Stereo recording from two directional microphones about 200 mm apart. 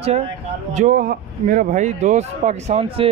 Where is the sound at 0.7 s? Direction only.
40° right (ahead or behind).